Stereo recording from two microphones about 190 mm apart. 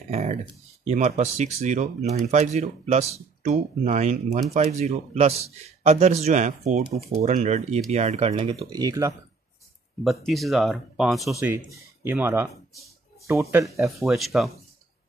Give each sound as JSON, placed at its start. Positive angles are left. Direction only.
{"t": 0.1, "sound": "speech", "side_deg": -35}
{"t": 8.3, "sound": "speech", "side_deg": -25}
{"t": 10.0, "sound": "speech", "side_deg": 0}
{"t": 11.3, "sound": "speech", "side_deg": -15}
{"t": 13.8, "sound": "speech", "side_deg": 0}